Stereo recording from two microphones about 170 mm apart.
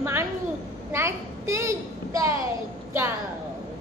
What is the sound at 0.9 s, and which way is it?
A child's voice, 15° right (ahead or behind).